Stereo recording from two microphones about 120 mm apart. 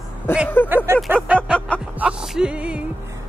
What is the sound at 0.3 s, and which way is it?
Speech, 20° left (ahead or behind).